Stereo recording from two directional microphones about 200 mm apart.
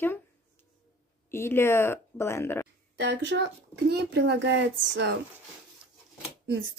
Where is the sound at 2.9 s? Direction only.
60° right (ahead or behind).